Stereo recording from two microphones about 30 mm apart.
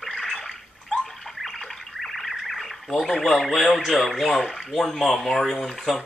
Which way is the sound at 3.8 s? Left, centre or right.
Centre.